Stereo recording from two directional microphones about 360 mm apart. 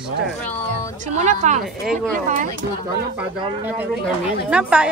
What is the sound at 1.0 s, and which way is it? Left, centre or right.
A woman's voice, centre.